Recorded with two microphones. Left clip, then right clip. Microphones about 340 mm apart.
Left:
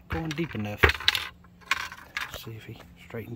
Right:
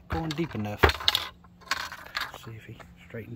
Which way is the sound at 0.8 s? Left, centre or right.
Right.